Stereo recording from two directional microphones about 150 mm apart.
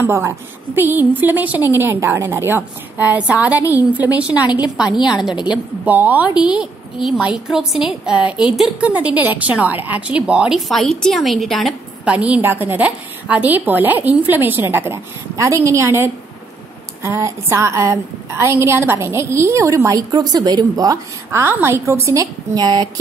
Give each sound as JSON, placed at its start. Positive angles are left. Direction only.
{"t": 0.0, "sound": "a woman's voice", "side_deg": -15}
{"t": 5.3, "sound": "a woman's voice", "side_deg": 30}
{"t": 5.9, "sound": "a woman's voice", "side_deg": -10}